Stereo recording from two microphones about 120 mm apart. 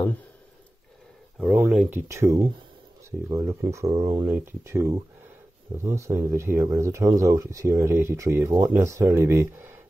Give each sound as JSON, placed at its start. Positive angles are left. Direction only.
{"t": 1.7, "sound": "speech", "side_deg": -15}